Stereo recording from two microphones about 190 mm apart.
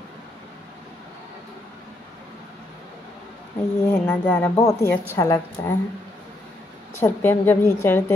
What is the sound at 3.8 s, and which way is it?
A woman's voice, 10° left (ahead or behind).